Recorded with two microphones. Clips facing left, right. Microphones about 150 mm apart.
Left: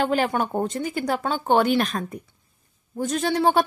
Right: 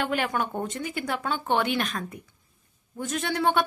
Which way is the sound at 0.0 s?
35° left (ahead or behind).